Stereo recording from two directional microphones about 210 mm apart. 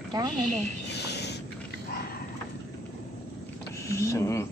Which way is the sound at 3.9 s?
15° left (ahead or behind).